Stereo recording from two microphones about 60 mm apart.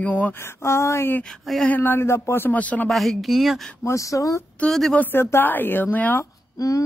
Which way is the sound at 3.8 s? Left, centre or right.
Left.